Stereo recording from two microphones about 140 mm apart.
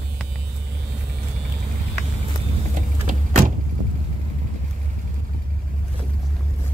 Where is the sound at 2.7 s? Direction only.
70° right (ahead or behind).